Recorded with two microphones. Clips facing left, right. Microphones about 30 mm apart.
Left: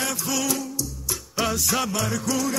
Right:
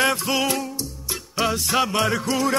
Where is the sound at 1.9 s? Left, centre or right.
Right.